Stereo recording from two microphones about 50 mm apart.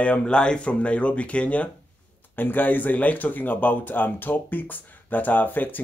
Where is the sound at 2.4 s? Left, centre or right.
Left.